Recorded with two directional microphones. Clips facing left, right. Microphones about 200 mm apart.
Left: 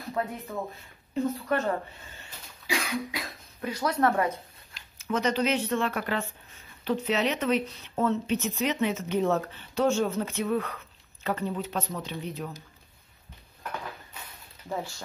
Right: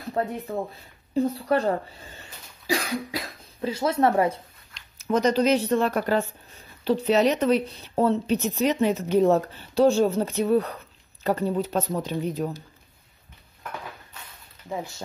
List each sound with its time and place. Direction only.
0.1 s speech: 30° right (ahead or behind)
4.9 s speech: 40° right (ahead or behind)
14.7 s speech: 20° right (ahead or behind)